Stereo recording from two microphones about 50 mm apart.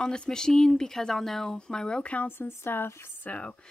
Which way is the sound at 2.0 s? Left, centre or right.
Left.